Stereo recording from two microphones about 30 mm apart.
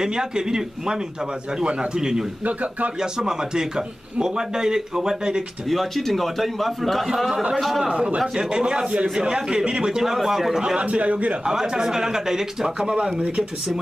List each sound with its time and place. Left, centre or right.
0.0 s a man's voice: right
1.6 s speech: right
2.0 s a man's voice: right
2.4 s a man's voice: right
3.0 s a man's voice: right
5.7 s a man's voice: centre
7.8 s a man's voice: right
9.1 s a man's voice: right
9.9 s speech: centre
10.8 s a man's voice: right
11.4 s a man's voice: right
12.6 s speech: right